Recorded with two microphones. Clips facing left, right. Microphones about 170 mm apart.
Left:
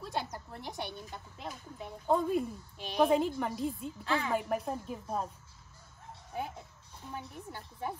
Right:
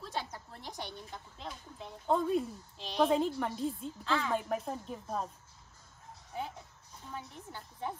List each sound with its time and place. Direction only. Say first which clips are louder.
0.0 s a sound: left 2 dB; 60° left (ahead or behind)
0.7 s a woman's voice: left 2 dB; 5° left (ahead or behind)
7.1 s a woman's voice: left 2 dB; 5° left (ahead or behind)